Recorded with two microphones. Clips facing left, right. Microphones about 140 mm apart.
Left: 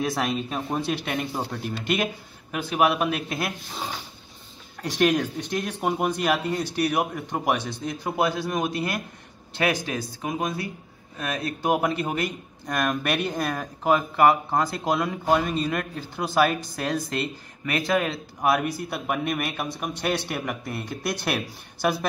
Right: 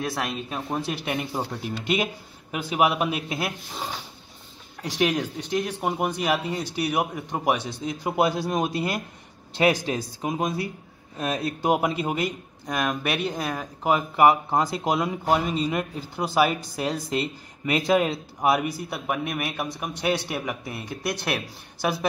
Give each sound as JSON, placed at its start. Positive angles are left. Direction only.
{"t": 0.0, "sound": "speech", "side_deg": 0}
{"t": 2.5, "sound": "speech", "side_deg": -10}
{"t": 4.8, "sound": "speech", "side_deg": -5}
{"t": 8.2, "sound": "speech", "side_deg": -25}
{"t": 17.6, "sound": "speech", "side_deg": -20}